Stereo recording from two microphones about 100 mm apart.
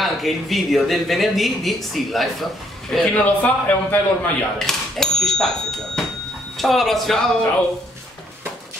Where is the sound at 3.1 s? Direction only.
15° left (ahead or behind).